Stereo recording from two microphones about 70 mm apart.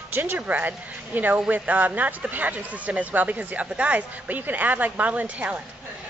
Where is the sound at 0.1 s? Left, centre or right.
Right.